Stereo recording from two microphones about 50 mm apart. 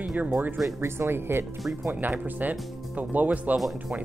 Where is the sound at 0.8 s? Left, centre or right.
Right.